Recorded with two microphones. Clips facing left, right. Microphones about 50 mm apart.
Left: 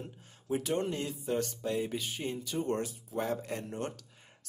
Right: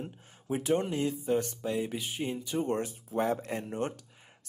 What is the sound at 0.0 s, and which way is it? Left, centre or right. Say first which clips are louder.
Speech: right 4 dB; centre.